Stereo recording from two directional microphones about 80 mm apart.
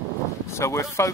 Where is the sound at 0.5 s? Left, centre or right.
Left.